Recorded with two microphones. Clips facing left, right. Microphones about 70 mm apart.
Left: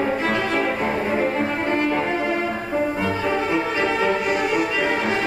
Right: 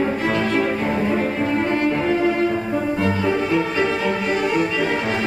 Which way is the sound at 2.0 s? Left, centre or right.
Centre.